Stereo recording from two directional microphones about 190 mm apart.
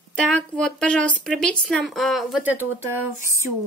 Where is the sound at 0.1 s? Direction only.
5° left (ahead or behind).